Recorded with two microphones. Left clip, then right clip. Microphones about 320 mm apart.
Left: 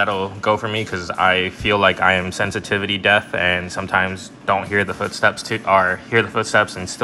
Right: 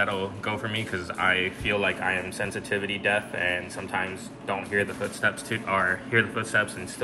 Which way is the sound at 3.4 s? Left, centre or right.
Left.